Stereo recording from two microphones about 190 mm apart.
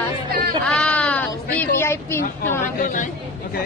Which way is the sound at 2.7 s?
45° left (ahead or behind).